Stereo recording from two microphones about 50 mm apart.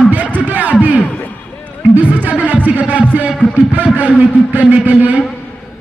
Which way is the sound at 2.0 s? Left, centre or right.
Right.